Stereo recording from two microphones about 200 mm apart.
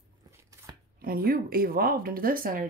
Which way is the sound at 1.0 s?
45° right (ahead or behind).